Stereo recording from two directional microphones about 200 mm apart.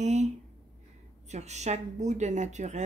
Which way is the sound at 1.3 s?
35° right (ahead or behind).